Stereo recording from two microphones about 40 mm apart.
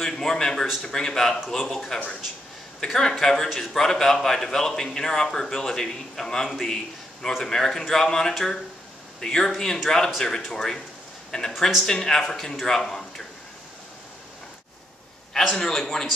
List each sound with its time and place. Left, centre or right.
0.0 s a sound: centre
0.8 s a man's voice: centre
15.3 s a man's voice: centre